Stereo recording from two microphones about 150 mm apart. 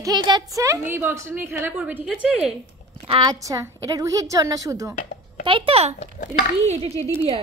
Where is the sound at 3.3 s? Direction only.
20° right (ahead or behind).